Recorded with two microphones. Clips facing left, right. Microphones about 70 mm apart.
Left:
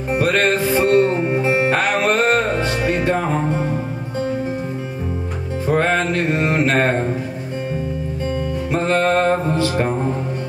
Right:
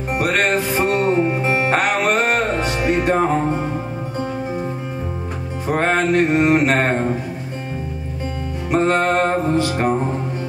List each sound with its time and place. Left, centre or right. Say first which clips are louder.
0.2 s music: left 1 dB; centre
5.7 s music: even; centre
8.7 s music: right 1 dB; centre